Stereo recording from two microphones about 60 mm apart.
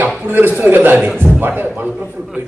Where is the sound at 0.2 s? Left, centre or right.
Right.